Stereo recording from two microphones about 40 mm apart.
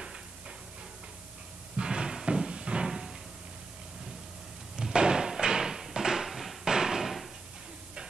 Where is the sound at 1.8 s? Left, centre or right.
Right.